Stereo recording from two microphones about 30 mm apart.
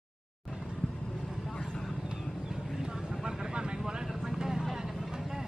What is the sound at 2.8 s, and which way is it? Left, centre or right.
Vehicle, right.